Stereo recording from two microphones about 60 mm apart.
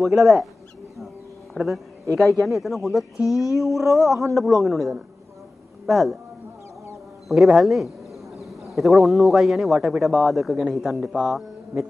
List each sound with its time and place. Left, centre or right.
0.0 s speech: centre
2.1 s speech: centre
3.3 s female singing: left
3.5 s speech: centre
7.5 s a sound: centre
8.7 s speech: centre